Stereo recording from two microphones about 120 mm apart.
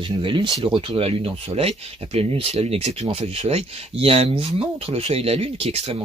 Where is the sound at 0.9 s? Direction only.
55° right (ahead or behind).